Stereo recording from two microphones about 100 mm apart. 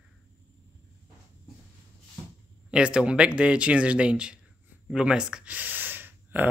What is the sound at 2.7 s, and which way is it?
Speech, 10° right (ahead or behind).